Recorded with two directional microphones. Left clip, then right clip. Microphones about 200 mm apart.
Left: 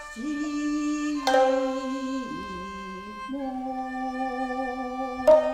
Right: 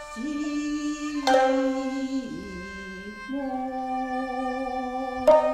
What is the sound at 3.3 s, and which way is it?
Music, 35° left (ahead or behind).